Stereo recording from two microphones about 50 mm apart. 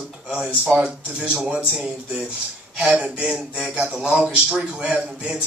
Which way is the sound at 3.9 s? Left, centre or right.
Centre.